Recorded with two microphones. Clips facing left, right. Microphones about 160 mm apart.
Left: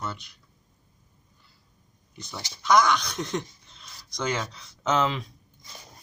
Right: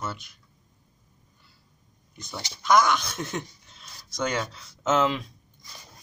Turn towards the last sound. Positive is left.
turn(degrees=0)  # may be behind; listen again after turning